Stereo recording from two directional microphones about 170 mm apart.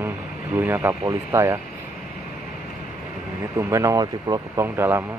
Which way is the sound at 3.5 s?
20° right (ahead or behind).